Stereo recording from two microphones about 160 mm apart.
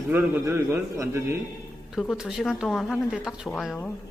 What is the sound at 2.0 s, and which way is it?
Speech, centre (ahead or behind).